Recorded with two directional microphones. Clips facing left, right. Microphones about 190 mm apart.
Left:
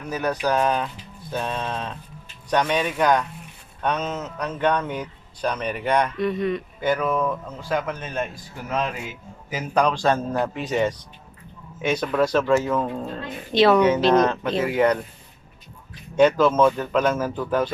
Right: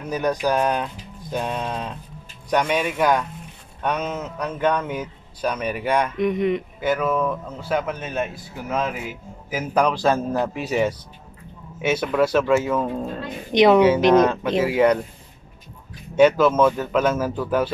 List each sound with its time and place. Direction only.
0.0 s speech: 15° right (ahead or behind)
6.1 s a sound: 20° right (ahead or behind)
6.8 s a man's voice: 5° right (ahead or behind)
16.2 s speech: 10° right (ahead or behind)